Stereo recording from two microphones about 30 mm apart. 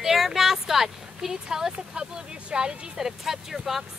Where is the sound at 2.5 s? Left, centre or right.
Right.